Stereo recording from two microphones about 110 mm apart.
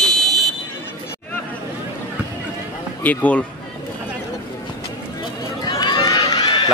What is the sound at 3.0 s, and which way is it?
Speech, 15° left (ahead or behind).